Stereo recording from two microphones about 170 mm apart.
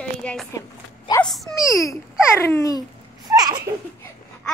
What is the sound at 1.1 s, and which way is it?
Speech, 25° left (ahead or behind).